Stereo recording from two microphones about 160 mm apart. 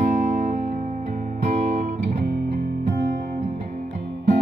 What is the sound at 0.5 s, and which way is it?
Music, 60° right (ahead or behind).